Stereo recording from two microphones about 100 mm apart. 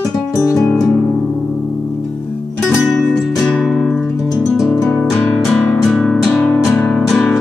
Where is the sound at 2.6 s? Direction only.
Centre (ahead or behind).